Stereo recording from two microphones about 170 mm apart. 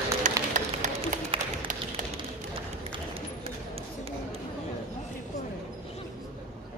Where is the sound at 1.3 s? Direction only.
35° right (ahead or behind).